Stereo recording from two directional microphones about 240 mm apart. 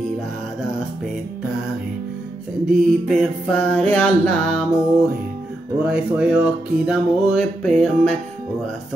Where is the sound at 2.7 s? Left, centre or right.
Centre.